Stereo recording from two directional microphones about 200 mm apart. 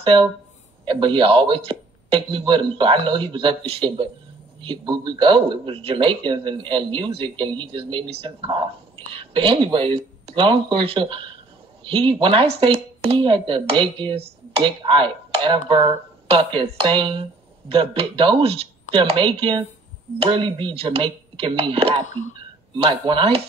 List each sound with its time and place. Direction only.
0.0 s a man's voice: 25° right (ahead or behind)